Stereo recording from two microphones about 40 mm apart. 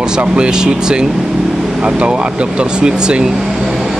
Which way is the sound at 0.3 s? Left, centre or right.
Centre.